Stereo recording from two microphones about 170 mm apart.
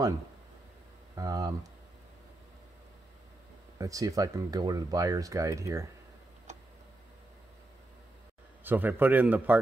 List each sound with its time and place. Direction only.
1.1 s speech: 20° right (ahead or behind)
3.7 s speech: 20° right (ahead or behind)
8.6 s a man's voice: 10° right (ahead or behind)